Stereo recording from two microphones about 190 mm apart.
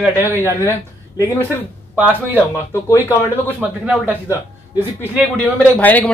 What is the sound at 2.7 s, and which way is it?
Speech, 10° left (ahead or behind).